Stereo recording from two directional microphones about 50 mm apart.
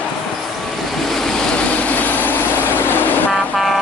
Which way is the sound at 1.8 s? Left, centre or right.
Left.